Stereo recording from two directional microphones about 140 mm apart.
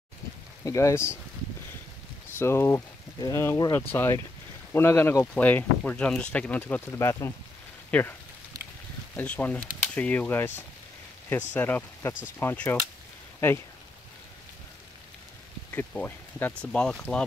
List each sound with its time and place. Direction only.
0.7 s speech: 20° left (ahead or behind)
2.3 s speech: 15° left (ahead or behind)
15.7 s speech: 15° left (ahead or behind)